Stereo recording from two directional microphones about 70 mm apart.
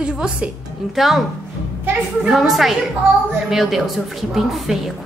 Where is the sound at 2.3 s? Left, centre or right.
Centre.